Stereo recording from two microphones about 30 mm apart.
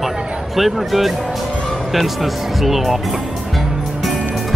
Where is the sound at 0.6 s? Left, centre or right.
Centre.